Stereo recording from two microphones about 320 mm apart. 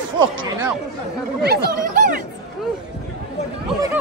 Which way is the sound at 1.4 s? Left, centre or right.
Right.